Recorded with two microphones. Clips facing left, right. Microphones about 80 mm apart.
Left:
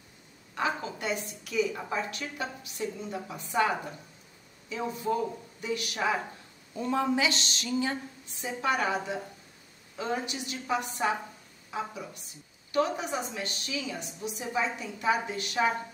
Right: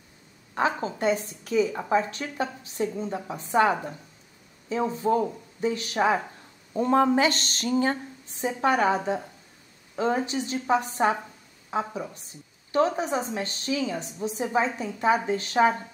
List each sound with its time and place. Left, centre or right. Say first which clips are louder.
0.6 s a woman's voice: right 5 dB; right
6.7 s a woman's voice: right 7 dB; right